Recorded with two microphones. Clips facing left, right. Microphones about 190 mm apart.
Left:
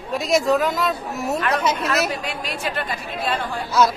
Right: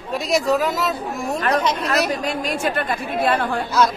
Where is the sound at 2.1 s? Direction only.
45° right (ahead or behind).